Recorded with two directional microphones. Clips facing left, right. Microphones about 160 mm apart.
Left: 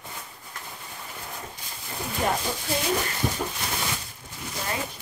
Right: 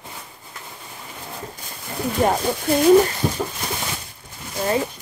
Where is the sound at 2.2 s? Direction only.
50° right (ahead or behind).